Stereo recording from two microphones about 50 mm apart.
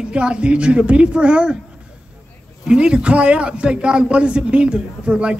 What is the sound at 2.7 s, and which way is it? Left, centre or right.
A man's voice, centre.